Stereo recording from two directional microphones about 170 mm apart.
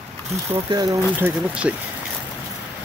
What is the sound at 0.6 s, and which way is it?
Speech, 20° right (ahead or behind).